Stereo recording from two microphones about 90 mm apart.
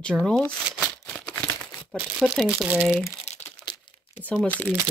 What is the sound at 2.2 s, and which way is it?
Speech, 5° right (ahead or behind).